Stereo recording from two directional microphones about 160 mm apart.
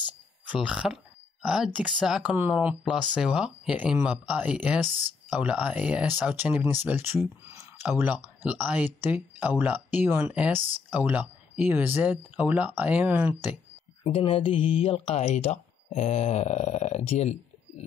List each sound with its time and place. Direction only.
0.5 s speech: 5° right (ahead or behind)
14.0 s speech: 35° left (ahead or behind)